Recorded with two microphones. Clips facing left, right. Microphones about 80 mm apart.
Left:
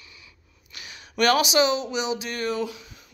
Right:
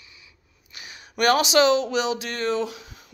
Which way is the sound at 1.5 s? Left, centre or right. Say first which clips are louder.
Right 3 dB; right.